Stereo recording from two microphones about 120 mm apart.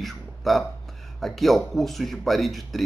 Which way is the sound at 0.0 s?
Centre (ahead or behind).